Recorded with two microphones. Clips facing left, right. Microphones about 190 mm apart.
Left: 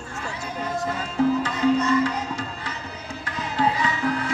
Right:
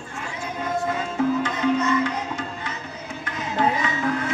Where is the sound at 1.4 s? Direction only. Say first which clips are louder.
Left 1 dB; 35° left (ahead or behind).